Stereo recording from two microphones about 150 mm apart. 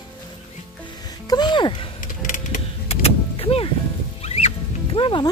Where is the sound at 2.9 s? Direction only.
40° left (ahead or behind).